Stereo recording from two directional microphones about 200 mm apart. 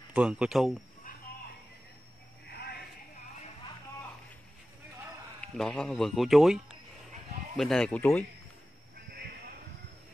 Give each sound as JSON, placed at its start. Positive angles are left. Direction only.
{"t": 0.1, "sound": "speech", "side_deg": -5}
{"t": 2.4, "sound": "a sound", "side_deg": 55}
{"t": 5.4, "sound": "speech", "side_deg": 5}